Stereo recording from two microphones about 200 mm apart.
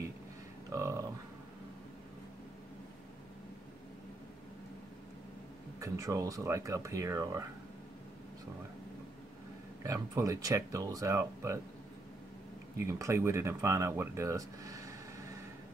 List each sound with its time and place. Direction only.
0.7 s speech: 15° right (ahead or behind)
5.8 s speech: 15° right (ahead or behind)
9.8 s speech: 15° right (ahead or behind)
12.7 s speech: 15° right (ahead or behind)